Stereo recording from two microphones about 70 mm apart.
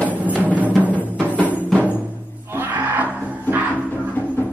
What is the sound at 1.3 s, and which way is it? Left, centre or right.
Music, left.